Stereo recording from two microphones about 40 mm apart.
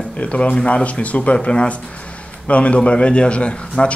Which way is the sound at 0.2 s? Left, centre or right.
Left.